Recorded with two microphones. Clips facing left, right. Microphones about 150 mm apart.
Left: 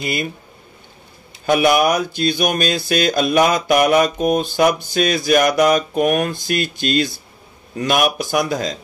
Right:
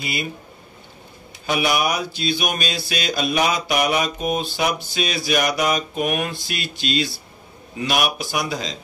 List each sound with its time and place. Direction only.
0.0 s speech: 50° left (ahead or behind)
1.4 s speech: 50° left (ahead or behind)